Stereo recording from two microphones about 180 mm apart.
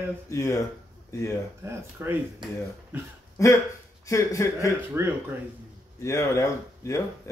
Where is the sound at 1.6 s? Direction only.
15° right (ahead or behind).